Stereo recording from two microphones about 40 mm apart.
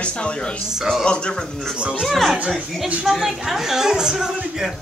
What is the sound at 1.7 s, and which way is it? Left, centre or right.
Speech, right.